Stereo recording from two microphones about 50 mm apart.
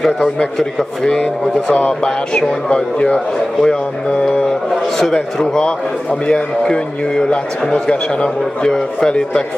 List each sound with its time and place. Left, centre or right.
1.7 s a man's voice: left